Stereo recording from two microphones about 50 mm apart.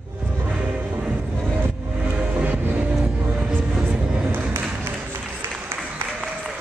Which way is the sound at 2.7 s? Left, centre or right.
Right.